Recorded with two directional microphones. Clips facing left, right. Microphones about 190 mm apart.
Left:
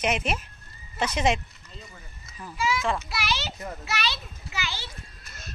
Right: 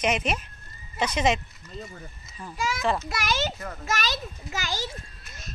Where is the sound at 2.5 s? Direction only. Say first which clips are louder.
Even; 45° right (ahead or behind).